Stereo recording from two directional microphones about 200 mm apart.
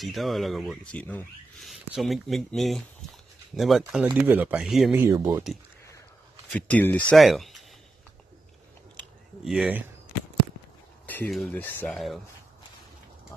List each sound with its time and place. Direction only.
0.0 s speech: centre (ahead or behind)
5.0 s speech: 10° right (ahead or behind)
6.5 s speech: 5° left (ahead or behind)
9.5 s speech: 5° right (ahead or behind)
11.1 s speech: 5° left (ahead or behind)